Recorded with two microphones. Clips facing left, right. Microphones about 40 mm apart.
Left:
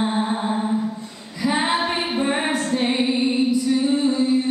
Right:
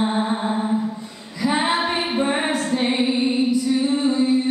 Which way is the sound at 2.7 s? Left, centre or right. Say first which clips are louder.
Even; centre.